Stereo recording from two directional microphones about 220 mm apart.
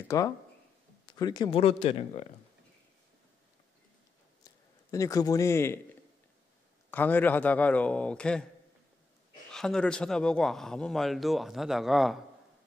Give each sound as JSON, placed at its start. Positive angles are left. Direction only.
{"t": 0.1, "sound": "a man's voice", "side_deg": 15}
{"t": 4.9, "sound": "a man's voice", "side_deg": 15}
{"t": 6.9, "sound": "a man's voice", "side_deg": 10}
{"t": 9.5, "sound": "speech", "side_deg": 5}